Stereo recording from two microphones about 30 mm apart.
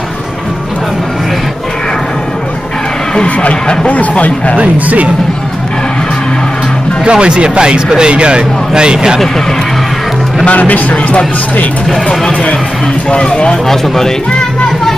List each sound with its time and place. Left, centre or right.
4.6 s speech: right
7.1 s speech: right
10.4 s speech: left
13.1 s speech: left
13.7 s speech: centre